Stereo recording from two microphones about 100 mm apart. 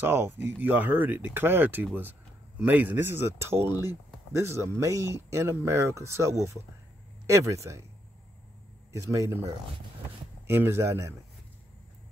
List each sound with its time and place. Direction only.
0.0 s speech: 25° right (ahead or behind)
9.0 s speech: 30° right (ahead or behind)